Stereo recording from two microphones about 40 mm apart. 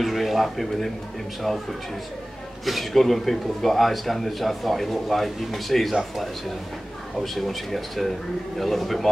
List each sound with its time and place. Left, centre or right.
0.0 s a man's voice: centre
2.6 s a man's voice: centre
7.2 s a man's voice: centre